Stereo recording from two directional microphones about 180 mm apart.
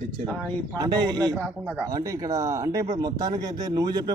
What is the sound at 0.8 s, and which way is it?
A man's voice, 20° right (ahead or behind).